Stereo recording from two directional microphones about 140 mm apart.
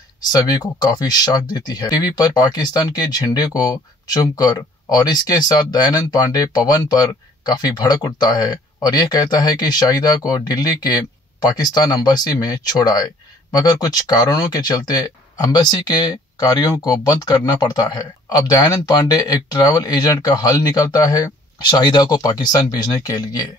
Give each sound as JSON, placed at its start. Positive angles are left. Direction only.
{"t": 0.3, "sound": "speech", "side_deg": 30}